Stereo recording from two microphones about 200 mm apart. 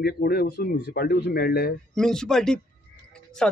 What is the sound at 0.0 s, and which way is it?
Speech, 50° left (ahead or behind).